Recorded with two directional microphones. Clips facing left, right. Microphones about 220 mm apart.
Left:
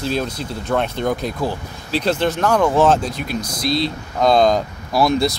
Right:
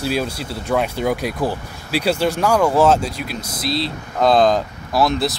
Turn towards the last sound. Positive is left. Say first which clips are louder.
# left 2 dB
turn(degrees=0)  # may be behind; listen again after turning